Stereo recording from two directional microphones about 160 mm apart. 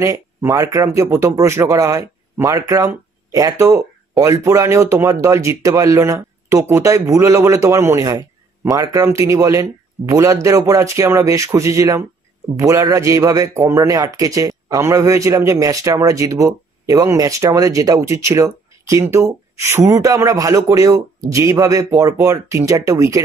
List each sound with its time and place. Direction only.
0.0 s a man's voice: 20° right (ahead or behind)